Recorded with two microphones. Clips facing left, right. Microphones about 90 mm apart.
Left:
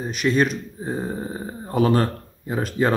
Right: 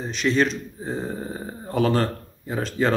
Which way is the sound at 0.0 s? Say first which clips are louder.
Left 1 dB; 10° left (ahead or behind).